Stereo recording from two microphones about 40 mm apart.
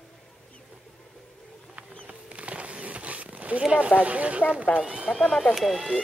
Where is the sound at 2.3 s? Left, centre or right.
Right.